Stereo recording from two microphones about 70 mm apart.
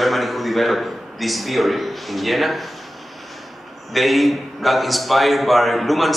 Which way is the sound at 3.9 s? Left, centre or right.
Centre.